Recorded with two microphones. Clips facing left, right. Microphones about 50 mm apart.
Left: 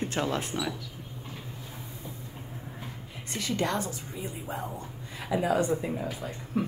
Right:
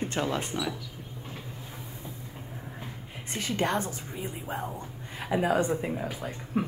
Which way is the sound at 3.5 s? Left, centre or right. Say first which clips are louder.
Right 1 dB; right.